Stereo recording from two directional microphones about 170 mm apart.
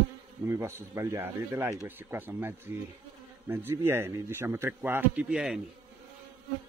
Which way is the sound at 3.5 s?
15° right (ahead or behind).